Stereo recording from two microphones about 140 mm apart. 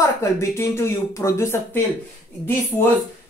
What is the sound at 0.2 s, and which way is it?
A man's voice, 20° left (ahead or behind).